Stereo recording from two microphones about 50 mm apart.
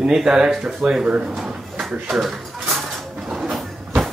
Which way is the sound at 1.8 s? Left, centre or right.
Centre.